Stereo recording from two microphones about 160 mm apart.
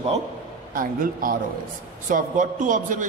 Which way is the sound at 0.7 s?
60° right (ahead or behind).